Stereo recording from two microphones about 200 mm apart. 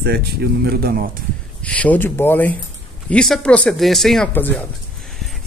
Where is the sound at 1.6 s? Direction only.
5° left (ahead or behind).